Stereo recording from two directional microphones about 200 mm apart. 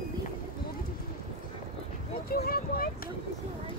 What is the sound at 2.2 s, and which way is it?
Speech, 50° left (ahead or behind).